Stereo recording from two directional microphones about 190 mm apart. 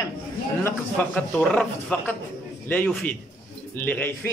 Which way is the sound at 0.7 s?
5° left (ahead or behind).